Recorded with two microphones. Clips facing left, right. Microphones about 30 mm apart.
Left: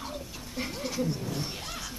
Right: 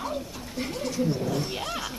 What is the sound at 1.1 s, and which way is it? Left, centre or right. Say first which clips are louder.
Speech: right 6 dB; centre.